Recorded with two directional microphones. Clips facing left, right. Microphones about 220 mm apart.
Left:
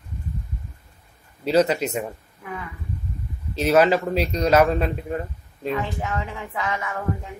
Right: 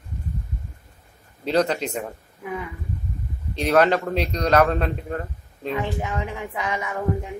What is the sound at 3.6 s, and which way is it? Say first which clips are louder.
A man's voice: left 1 dB; 5° left (ahead or behind).